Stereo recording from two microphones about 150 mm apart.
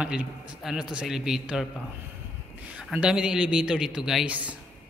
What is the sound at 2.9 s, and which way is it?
A man's voice, 5° right (ahead or behind).